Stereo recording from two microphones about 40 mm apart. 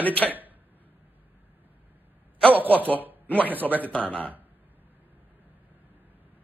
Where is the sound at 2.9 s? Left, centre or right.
Right.